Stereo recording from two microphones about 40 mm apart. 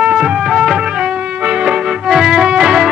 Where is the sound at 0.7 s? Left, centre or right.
Centre.